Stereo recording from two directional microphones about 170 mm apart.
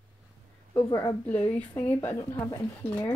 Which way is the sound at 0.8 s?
25° left (ahead or behind).